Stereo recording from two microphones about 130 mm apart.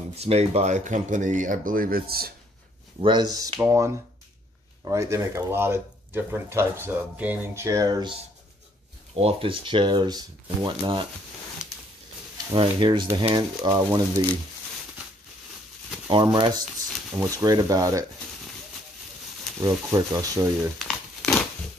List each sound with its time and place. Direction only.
0.2 s speech: 55° right (ahead or behind); by 1.9 s 90° right
3.0 s speech: 35° right (ahead or behind); by 7.6 s 15° right (ahead or behind)
7.6 s speech: 25° right (ahead or behind)
9.1 s speech: 45° right (ahead or behind)
12.5 s speech: 40° right (ahead or behind)
16.1 s speech: 35° right (ahead or behind)
19.6 s speech: 25° right (ahead or behind)
20.8 s crumpling: centre (ahead or behind)